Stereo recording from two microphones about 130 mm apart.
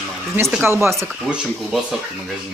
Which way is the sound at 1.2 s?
Centre (ahead or behind).